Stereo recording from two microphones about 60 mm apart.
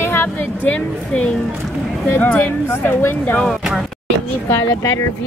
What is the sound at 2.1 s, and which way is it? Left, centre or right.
Speech, left.